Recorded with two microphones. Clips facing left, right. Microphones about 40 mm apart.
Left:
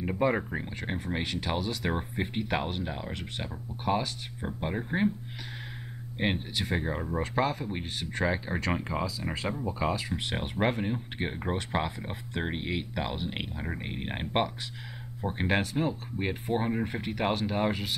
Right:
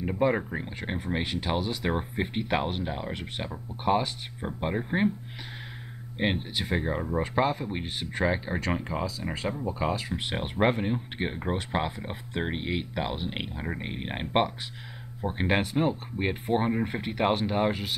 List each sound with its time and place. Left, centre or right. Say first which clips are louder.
0.0 s speech: right 2 dB; centre
6.1 s speech: right 2 dB; centre